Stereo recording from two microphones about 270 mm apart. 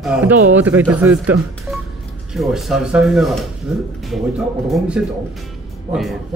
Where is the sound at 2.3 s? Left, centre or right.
Centre.